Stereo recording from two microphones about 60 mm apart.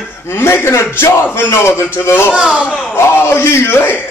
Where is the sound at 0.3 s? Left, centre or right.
Left.